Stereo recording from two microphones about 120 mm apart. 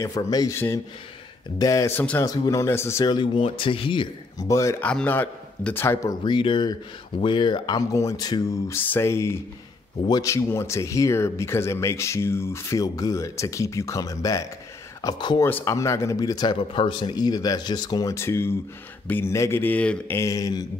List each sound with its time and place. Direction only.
0.0 s speech: 30° left (ahead or behind)
1.6 s speech: 25° left (ahead or behind)
2.2 s speech: 30° left (ahead or behind)
3.1 s speech: 45° left (ahead or behind)
4.4 s speech: 25° left (ahead or behind)
4.8 s a man's voice: 15° left (ahead or behind)
6.2 s speech: 45° left (ahead or behind)
7.9 s speech: 25° left (ahead or behind)
8.7 s speech: 20° left (ahead or behind); by 15.4 s 35° left (ahead or behind)
15.4 s speech: 20° left (ahead or behind)
16.2 s speech: 35° left (ahead or behind)
18.1 s a man's voice: 20° left (ahead or behind)
20.2 s speech: 30° left (ahead or behind)